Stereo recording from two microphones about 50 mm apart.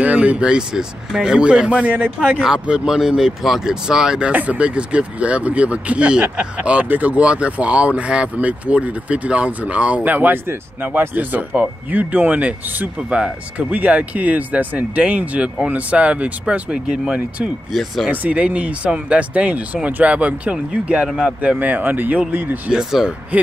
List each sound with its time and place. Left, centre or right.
0.0 s speech: right
2.6 s speech: centre
4.3 s speech: right
18.1 s speech: right
22.7 s speech: centre